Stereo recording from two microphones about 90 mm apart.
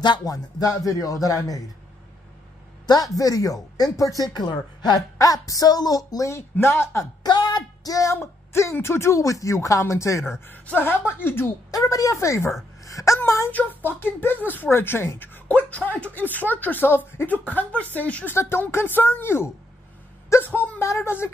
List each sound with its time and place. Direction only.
0.0 s a woman's voice: 50° left (ahead or behind)
2.9 s a woman's voice: 40° left (ahead or behind)
6.5 s speech: 25° left (ahead or behind)
7.2 s a sound: 50° left (ahead or behind)
8.2 s a woman's voice: 25° left (ahead or behind)
10.4 s speech: 20° left (ahead or behind)
11.7 s a woman's voice: 40° left (ahead or behind)
13.5 s speech: 20° left (ahead or behind)